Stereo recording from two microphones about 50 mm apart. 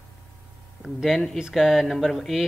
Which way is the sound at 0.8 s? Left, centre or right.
Centre.